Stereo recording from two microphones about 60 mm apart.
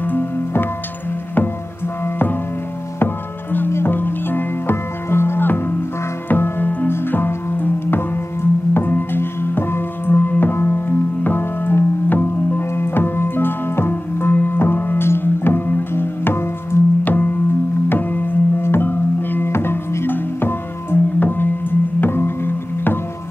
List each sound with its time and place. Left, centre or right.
0.0 s music: left
3.5 s music: left
17.0 s music: left